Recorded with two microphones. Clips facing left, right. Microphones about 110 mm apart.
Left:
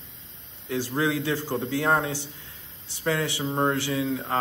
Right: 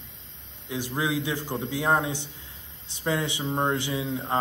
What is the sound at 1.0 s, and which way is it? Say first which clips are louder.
A man's voice: left 2 dB; 15° right (ahead or behind).